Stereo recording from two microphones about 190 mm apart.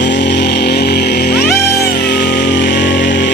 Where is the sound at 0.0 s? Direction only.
65° left (ahead or behind).